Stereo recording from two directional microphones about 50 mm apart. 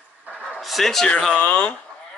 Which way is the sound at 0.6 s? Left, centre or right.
Centre.